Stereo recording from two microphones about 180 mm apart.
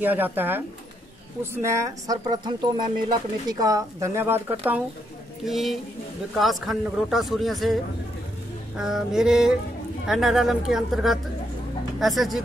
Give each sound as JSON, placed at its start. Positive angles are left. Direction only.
{"t": 0.0, "sound": "a man's voice", "side_deg": -10}